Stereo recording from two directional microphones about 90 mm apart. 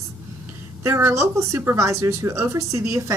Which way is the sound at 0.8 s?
30° right (ahead or behind).